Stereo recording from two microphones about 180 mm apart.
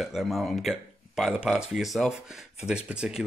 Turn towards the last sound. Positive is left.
turn(degrees=-5)  # may be behind; listen again after turning